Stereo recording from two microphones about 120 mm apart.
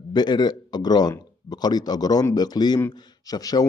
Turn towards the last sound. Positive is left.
turn(degrees=30)  # may be behind; listen again after turning